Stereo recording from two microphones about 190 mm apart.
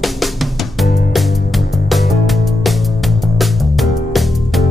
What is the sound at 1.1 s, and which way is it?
Music, centre (ahead or behind).